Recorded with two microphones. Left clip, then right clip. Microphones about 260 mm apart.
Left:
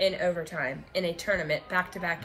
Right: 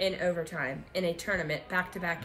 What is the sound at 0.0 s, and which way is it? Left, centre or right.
Speech, centre.